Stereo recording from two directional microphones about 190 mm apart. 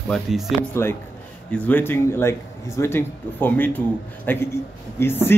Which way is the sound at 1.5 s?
10° left (ahead or behind).